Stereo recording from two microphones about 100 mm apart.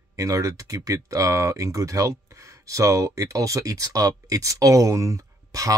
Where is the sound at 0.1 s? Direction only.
30° right (ahead or behind).